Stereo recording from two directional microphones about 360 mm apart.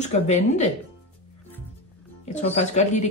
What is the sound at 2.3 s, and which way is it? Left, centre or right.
Speech, centre.